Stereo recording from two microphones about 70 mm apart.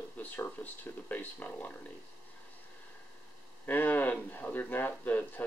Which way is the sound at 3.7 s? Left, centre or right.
Left.